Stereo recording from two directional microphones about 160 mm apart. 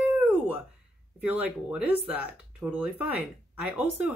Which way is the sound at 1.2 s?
5° right (ahead or behind).